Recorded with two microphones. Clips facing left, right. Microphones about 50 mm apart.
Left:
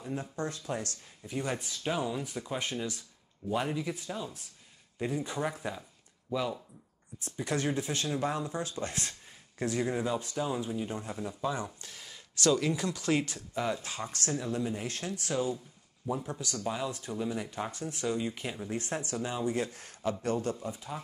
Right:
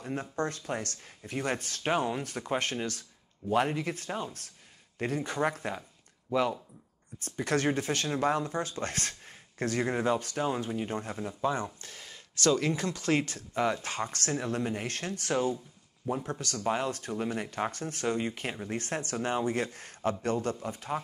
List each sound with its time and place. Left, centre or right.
0.0 s speech: right
1.8 s speech: right
7.3 s speech: right
11.1 s speech: right
11.5 s speech: right